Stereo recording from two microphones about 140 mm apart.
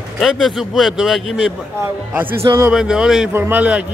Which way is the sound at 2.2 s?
15° right (ahead or behind).